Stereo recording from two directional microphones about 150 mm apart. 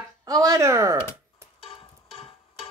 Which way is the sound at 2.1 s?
40° left (ahead or behind).